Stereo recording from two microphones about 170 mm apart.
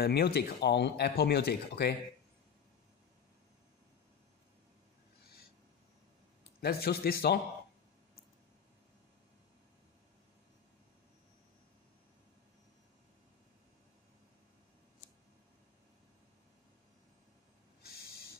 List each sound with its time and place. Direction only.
0.0 s speech: 70° left (ahead or behind)
6.6 s speech: 65° left (ahead or behind)